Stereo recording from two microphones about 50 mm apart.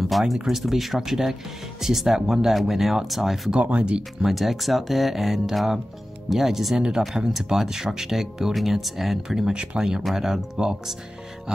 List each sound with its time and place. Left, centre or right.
0.1 s speech: centre
3.7 s speech: right
4.2 s speech: centre
9.5 s speech: centre